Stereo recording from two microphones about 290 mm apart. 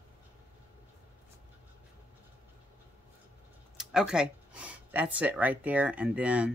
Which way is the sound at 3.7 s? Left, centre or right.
Centre.